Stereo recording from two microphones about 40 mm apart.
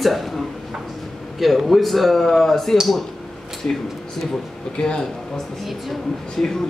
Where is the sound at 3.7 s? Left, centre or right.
Left.